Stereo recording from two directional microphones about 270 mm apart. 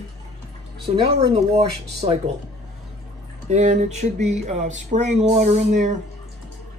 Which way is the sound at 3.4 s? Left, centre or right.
Right.